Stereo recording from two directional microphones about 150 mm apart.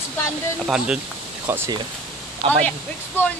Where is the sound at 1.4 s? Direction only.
15° right (ahead or behind).